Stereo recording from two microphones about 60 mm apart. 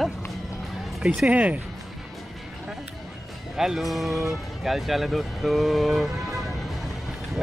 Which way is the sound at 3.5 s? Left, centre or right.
Centre.